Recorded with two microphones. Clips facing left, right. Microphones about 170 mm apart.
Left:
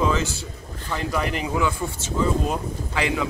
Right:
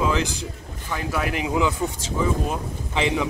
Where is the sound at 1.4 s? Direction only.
20° right (ahead or behind).